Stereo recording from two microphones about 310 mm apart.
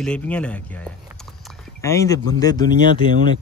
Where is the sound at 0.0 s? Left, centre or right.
Centre.